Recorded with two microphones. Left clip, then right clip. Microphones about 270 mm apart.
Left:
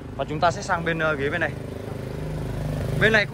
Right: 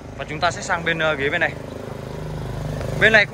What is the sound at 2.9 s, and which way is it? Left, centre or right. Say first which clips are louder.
Speech: right 5 dB; centre.